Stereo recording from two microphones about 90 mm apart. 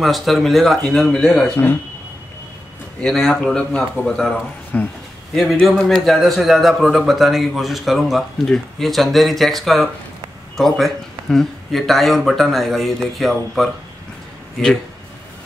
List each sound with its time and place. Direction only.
0.0 s a man's voice: centre (ahead or behind)
3.0 s a man's voice: 5° left (ahead or behind)
5.3 s a man's voice: centre (ahead or behind)